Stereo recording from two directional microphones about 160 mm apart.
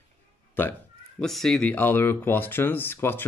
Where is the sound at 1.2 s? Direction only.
5° left (ahead or behind).